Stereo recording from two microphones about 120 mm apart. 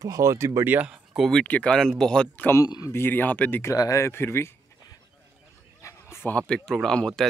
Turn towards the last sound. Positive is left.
turn(degrees=5)  # may be behind; listen again after turning